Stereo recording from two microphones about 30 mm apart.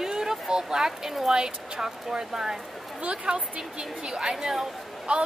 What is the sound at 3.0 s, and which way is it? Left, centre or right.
A woman's voice, right.